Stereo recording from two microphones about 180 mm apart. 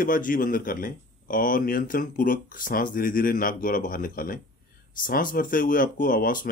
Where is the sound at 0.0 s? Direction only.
50° left (ahead or behind).